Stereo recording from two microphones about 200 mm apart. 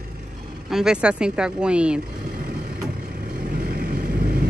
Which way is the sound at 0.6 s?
Centre (ahead or behind).